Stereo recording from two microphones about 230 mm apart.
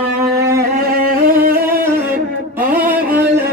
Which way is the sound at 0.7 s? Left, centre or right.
Right.